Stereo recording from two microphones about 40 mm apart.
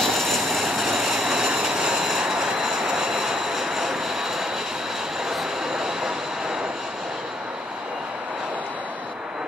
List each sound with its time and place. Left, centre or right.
0.0 s vehicle: centre
5.3 s train: centre